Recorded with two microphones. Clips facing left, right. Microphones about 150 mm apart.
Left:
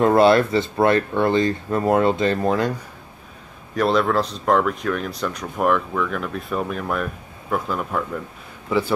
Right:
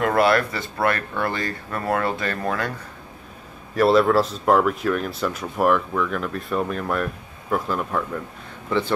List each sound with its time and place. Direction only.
0.0 s speech: 25° left (ahead or behind)
3.7 s speech: centre (ahead or behind)